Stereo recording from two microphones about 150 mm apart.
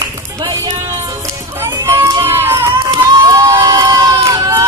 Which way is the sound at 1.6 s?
20° right (ahead or behind).